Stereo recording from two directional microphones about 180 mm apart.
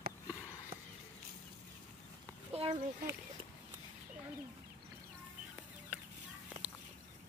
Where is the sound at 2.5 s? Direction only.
35° right (ahead or behind).